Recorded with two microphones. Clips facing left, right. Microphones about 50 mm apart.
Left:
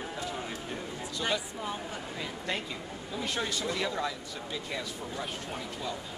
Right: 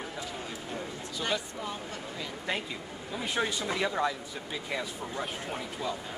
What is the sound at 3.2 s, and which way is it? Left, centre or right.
Speech, centre.